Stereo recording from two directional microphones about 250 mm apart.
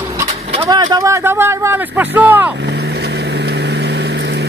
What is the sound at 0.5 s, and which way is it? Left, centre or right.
Speech, centre.